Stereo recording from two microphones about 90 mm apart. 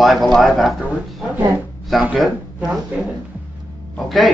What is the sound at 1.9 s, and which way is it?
Speech, centre (ahead or behind).